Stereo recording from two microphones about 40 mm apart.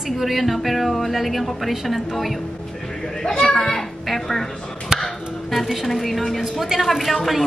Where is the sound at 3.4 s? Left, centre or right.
Centre.